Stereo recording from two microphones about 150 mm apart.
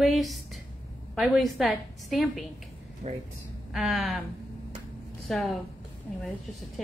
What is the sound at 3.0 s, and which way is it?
Speech, 45° right (ahead or behind).